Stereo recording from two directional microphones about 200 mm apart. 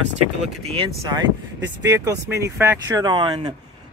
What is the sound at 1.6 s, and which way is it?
Speech, 60° right (ahead or behind).